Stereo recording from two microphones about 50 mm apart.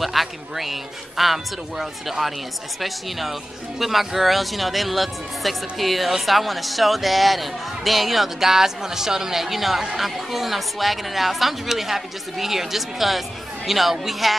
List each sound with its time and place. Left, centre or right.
0.0 s speech: centre